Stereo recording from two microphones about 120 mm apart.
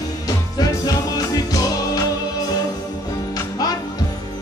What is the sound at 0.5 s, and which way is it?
Music, 30° left (ahead or behind).